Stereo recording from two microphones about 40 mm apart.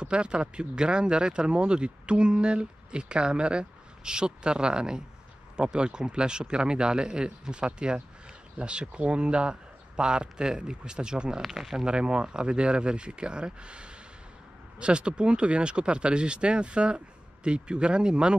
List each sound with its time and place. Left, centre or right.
0.0 s speech: right
11.5 s speech: centre
11.8 s speech: right